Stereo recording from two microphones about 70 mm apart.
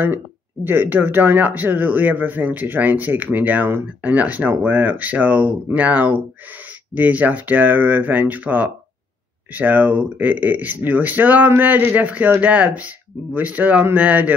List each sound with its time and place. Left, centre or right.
0.7 s speech: right